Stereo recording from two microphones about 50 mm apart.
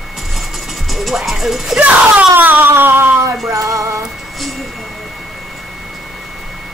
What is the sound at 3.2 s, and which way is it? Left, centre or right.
Music, right.